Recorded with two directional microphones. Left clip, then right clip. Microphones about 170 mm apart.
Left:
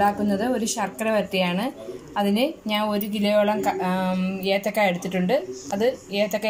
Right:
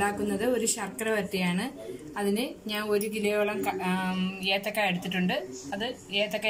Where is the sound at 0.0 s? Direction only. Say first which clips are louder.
Left 6 dB; 20° left (ahead or behind).